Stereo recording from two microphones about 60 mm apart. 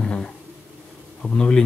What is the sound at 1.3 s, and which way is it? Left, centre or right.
Speech, centre.